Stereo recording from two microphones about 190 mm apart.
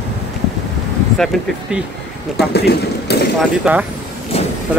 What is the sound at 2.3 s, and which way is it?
Speech, 60° left (ahead or behind).